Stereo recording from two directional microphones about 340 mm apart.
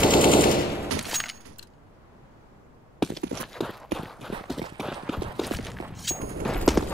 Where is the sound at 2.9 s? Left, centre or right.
Centre.